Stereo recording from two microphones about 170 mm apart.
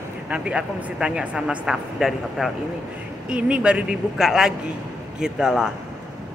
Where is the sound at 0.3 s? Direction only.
5° right (ahead or behind).